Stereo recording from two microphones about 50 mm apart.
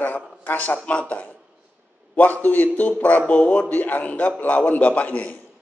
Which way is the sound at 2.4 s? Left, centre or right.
Left.